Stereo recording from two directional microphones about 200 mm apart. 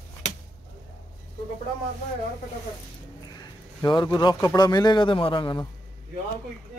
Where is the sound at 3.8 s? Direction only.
20° left (ahead or behind).